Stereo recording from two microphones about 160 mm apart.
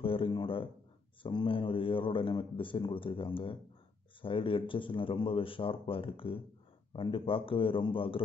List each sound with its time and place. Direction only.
0.0 s a man's voice: 35° left (ahead or behind)